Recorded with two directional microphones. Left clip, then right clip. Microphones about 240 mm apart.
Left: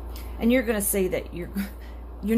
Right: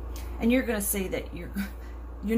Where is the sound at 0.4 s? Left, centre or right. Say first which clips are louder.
Left 3 dB; left.